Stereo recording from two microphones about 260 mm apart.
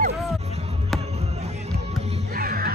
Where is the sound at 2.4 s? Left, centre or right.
Right.